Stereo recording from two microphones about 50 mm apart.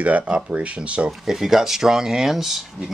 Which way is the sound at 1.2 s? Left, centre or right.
Centre.